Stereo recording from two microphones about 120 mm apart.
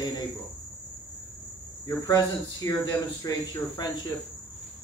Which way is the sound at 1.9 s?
30° left (ahead or behind).